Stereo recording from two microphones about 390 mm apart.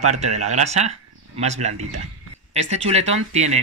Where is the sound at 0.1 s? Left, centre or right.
Centre.